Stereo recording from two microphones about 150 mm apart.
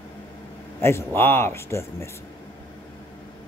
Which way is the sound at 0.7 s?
15° left (ahead or behind).